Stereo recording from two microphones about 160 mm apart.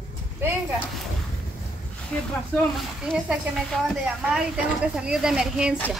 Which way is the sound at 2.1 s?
5° left (ahead or behind).